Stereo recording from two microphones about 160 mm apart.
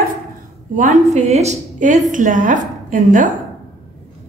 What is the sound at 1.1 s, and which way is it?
A woman's voice, 45° right (ahead or behind).